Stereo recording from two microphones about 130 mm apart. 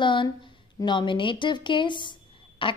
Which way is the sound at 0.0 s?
40° left (ahead or behind).